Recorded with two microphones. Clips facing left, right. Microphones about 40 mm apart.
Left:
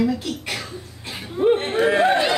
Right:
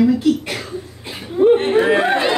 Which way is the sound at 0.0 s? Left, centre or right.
Centre.